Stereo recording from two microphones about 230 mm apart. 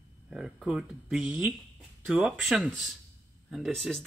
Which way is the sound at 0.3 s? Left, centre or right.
Centre.